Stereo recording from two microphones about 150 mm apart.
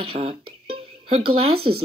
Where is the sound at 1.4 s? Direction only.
40° right (ahead or behind).